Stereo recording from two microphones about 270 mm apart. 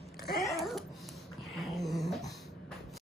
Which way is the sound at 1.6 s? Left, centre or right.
Centre.